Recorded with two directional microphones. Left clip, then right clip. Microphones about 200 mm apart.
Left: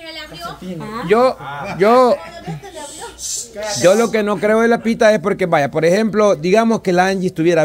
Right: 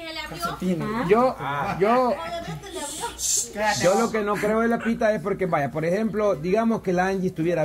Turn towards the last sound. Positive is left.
turn(degrees=35)  # may be behind; listen again after turning